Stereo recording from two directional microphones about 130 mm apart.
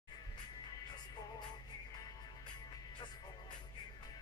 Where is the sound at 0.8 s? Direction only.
30° left (ahead or behind).